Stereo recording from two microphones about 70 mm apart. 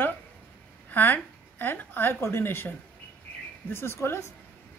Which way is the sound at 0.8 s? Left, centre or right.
Left.